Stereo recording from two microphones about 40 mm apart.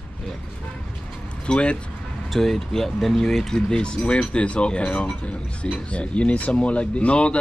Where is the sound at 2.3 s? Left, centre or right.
Centre.